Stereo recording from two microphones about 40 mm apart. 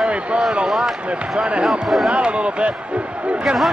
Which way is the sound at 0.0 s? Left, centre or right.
Right.